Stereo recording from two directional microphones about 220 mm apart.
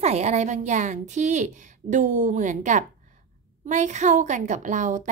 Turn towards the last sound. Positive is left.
turn(degrees=-35)  # may be behind; listen again after turning